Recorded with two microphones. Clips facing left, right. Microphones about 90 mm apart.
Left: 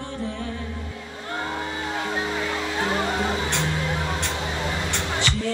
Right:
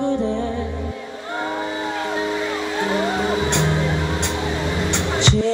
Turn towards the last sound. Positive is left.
turn(degrees=-20)  # may be behind; listen again after turning